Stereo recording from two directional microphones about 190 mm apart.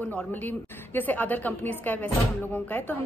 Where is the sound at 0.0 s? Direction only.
10° left (ahead or behind).